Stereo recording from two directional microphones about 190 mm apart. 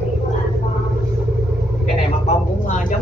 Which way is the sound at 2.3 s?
40° left (ahead or behind).